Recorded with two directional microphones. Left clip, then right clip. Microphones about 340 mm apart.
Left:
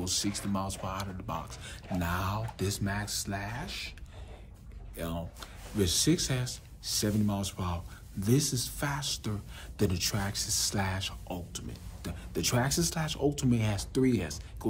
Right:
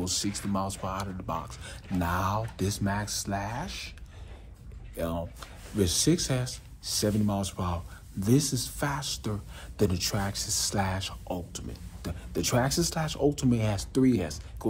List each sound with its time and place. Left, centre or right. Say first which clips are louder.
0.0 s speech: right 1 dB; centre
4.9 s speech: right 6 dB; centre